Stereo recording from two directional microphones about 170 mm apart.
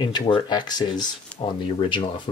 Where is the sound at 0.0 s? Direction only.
25° left (ahead or behind).